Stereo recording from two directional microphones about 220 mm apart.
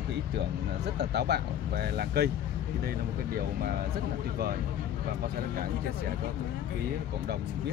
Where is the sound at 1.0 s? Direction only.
50° right (ahead or behind).